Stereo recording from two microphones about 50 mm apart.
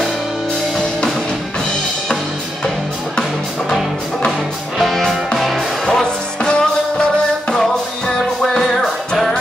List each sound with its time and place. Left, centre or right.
4.7 s music: centre
5.9 s music: centre
8.1 s music: centre